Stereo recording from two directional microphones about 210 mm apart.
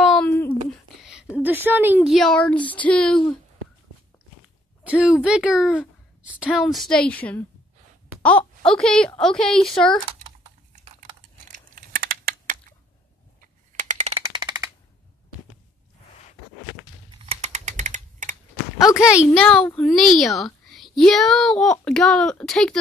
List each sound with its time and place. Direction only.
0.0 s a sound: centre (ahead or behind)
1.4 s a woman's voice: 10° right (ahead or behind)
4.8 s a woman's voice: 5° right (ahead or behind)
11.4 s crumpling: 40° right (ahead or behind)
13.4 s a sound: 35° right (ahead or behind); by 14.7 s 20° right (ahead or behind)
17.3 s typing: 30° right (ahead or behind)
18.8 s speech: 15° left (ahead or behind)
19.3 s a woman's voice: 5° left (ahead or behind)